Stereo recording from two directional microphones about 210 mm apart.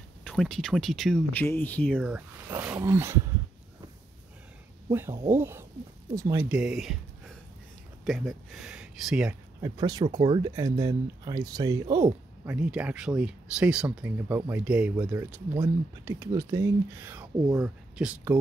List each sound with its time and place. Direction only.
0.3 s speech: centre (ahead or behind)
2.1 s speech: 10° right (ahead or behind)
4.9 s speech: 10° right (ahead or behind)
6.5 s speech: 5° right (ahead or behind)
8.0 s speech: centre (ahead or behind)
9.6 s speech: 20° right (ahead or behind)
12.5 s speech: 5° right (ahead or behind)